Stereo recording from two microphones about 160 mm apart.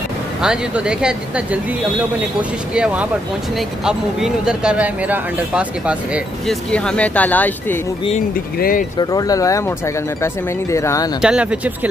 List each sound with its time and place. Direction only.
0.4 s speech: 5° right (ahead or behind)
2.7 s speech: 5° right (ahead or behind)
6.7 s speech: 5° left (ahead or behind)
8.5 s speech: 65° left (ahead or behind)
8.9 s speech: 25° left (ahead or behind)
11.1 s speech: 5° right (ahead or behind)